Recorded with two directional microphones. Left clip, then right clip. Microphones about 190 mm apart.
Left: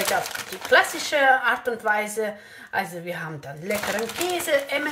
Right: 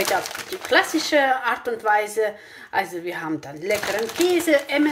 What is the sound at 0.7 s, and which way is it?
Speech, 35° right (ahead or behind).